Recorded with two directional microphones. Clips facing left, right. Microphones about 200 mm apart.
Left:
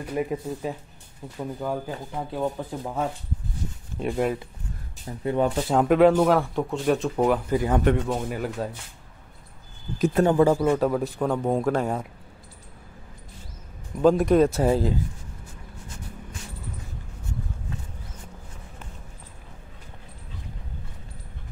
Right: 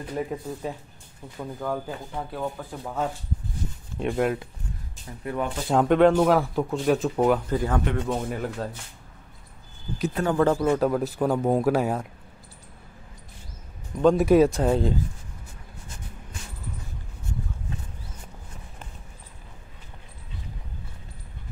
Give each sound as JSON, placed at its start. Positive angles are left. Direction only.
{"t": 0.1, "sound": "speech", "side_deg": 10}
{"t": 4.0, "sound": "speech", "side_deg": 0}
{"t": 5.2, "sound": "speech", "side_deg": 25}
{"t": 5.7, "sound": "speech", "side_deg": 5}
{"t": 7.5, "sound": "speech", "side_deg": 15}
{"t": 8.1, "sound": "speech", "side_deg": 5}
{"t": 9.9, "sound": "speech", "side_deg": 45}
{"t": 10.2, "sound": "speech", "side_deg": 15}
{"t": 14.0, "sound": "speech", "side_deg": -5}